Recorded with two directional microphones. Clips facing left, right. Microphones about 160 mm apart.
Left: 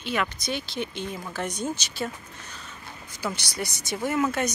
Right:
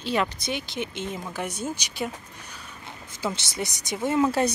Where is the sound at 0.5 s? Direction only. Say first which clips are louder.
Even; 20° right (ahead or behind).